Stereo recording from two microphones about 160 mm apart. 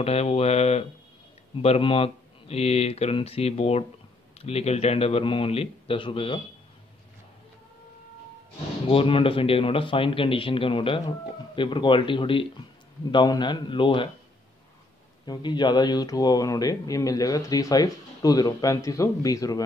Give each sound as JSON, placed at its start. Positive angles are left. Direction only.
{"t": 0.0, "sound": "a man's voice", "side_deg": 40}
{"t": 8.8, "sound": "a man's voice", "side_deg": 35}
{"t": 15.2, "sound": "speech", "side_deg": 25}